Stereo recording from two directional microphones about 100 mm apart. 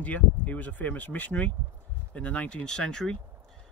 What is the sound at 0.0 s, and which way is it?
Speech, 15° left (ahead or behind).